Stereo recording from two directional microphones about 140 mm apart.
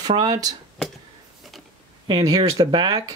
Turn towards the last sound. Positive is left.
turn(degrees=-25)  # may be behind; listen again after turning